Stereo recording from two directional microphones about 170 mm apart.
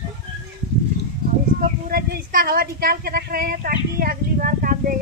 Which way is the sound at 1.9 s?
60° right (ahead or behind).